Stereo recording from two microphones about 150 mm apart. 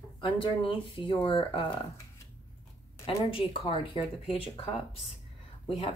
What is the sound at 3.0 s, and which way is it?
Speech, 40° left (ahead or behind).